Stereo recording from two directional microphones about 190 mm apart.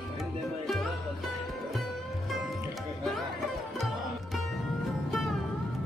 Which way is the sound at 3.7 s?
Centre (ahead or behind).